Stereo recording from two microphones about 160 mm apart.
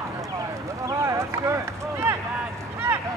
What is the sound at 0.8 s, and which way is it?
Run, 20° right (ahead or behind).